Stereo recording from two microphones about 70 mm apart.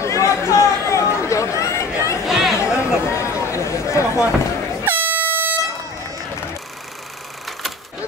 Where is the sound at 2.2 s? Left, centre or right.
Centre.